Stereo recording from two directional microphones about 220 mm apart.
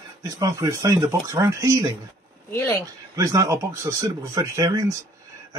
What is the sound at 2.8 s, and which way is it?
Speech, 15° right (ahead or behind).